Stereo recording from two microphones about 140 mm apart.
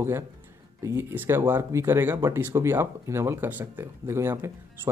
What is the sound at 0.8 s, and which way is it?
A man's voice, 15° right (ahead or behind).